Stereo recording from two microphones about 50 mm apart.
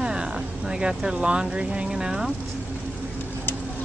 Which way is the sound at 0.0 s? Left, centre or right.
Centre.